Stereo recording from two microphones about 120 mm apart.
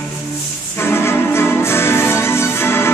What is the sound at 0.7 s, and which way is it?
Music, 20° left (ahead or behind).